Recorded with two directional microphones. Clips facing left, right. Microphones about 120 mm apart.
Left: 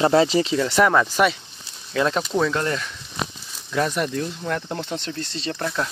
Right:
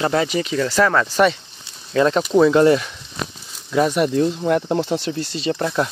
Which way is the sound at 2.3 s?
15° right (ahead or behind).